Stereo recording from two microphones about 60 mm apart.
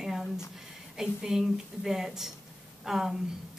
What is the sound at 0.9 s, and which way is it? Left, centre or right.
A woman's voice, centre.